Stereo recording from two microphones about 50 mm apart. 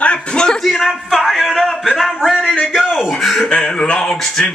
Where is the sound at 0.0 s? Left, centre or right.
Centre.